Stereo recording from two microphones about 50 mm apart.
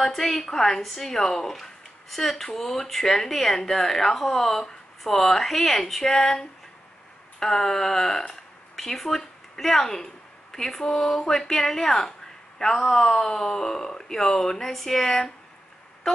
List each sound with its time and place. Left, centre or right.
0.0 s a woman's voice: centre
15.0 s a woman's voice: centre